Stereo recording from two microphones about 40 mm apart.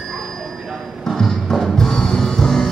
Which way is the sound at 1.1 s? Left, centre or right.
Centre.